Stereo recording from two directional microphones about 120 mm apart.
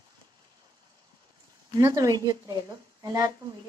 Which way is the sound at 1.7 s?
35° right (ahead or behind).